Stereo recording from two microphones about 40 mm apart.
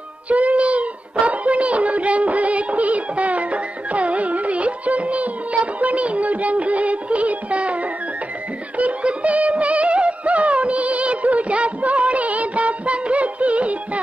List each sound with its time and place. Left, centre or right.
0.3 s speech: right
8.7 s music: right